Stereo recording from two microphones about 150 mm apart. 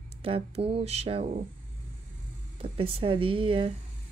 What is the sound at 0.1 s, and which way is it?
Speech, 40° right (ahead or behind).